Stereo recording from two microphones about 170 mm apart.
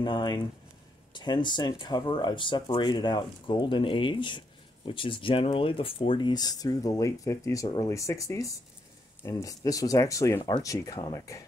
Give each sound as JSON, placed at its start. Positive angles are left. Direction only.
{"t": 0.0, "sound": "speech", "side_deg": 25}